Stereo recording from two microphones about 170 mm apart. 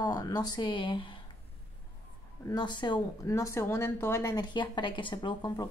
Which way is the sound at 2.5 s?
25° left (ahead or behind).